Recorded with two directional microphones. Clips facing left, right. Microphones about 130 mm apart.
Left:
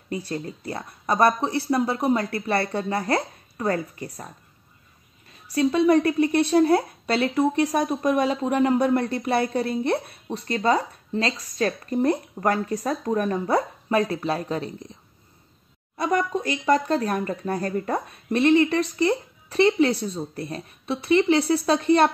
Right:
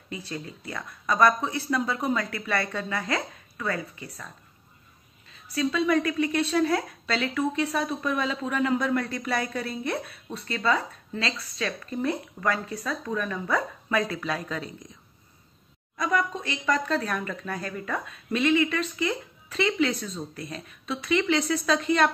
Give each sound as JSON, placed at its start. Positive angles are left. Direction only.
{"t": 0.1, "sound": "a woman's voice", "side_deg": 35}
{"t": 5.5, "sound": "a woman's voice", "side_deg": 35}
{"t": 16.0, "sound": "a woman's voice", "side_deg": 35}